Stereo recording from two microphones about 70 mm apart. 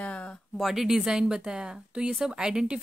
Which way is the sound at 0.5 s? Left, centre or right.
Centre.